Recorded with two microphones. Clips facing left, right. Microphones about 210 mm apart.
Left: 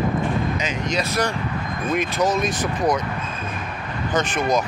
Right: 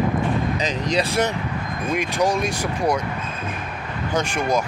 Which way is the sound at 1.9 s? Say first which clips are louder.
Even; 10° right (ahead or behind).